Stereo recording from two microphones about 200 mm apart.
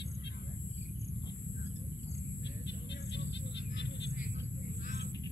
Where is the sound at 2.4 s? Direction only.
60° left (ahead or behind).